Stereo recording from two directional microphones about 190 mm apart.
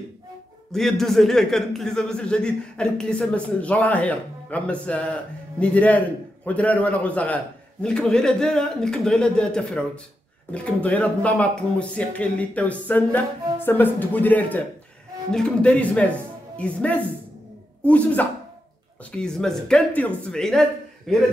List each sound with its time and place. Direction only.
0.7 s speech: centre (ahead or behind)